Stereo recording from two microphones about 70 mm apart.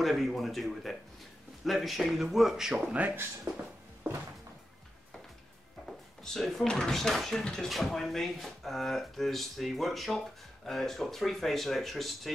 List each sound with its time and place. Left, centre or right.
0.0 s speech: centre
2.9 s speech: right
3.5 s a sound: right
5.9 s speech: centre